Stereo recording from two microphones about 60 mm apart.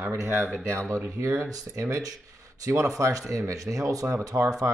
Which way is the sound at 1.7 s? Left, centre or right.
Right.